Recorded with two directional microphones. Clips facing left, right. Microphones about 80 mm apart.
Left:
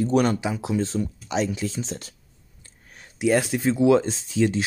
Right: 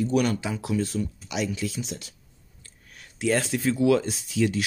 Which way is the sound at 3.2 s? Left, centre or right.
Centre.